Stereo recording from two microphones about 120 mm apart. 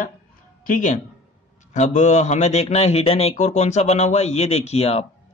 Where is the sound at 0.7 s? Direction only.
90° left.